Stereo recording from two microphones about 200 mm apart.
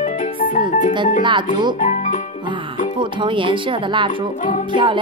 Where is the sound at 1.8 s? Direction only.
40° left (ahead or behind).